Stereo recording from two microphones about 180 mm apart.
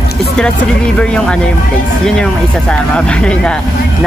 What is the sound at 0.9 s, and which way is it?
Speech, 5° left (ahead or behind).